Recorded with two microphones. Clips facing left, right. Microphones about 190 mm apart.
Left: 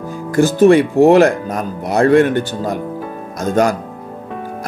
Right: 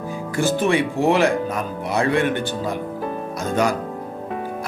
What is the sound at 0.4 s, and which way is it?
Speech, 45° left (ahead or behind).